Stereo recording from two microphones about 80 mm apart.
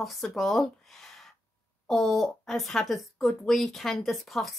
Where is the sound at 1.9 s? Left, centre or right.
Centre.